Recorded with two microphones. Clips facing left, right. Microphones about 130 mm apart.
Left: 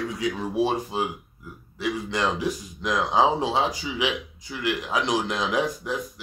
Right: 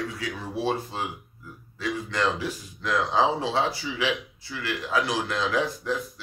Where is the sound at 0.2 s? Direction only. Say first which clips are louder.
Left 9 dB; 15° left (ahead or behind).